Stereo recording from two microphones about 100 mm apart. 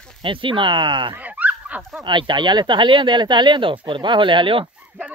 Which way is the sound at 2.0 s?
50° right (ahead or behind).